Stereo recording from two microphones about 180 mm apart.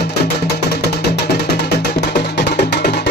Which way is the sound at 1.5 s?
65° left (ahead or behind).